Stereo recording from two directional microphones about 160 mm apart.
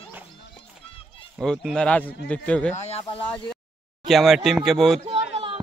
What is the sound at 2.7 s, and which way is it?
Speech, 40° left (ahead or behind).